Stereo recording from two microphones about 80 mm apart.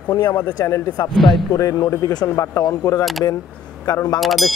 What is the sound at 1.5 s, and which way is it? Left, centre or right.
A man's voice, left.